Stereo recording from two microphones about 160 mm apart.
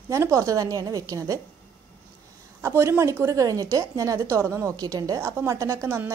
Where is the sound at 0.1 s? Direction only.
20° right (ahead or behind).